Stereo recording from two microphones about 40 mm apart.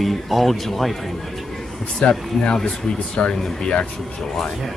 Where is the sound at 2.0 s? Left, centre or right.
Left.